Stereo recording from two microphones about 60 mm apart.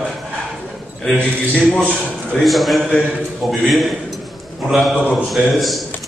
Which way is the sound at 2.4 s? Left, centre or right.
Centre.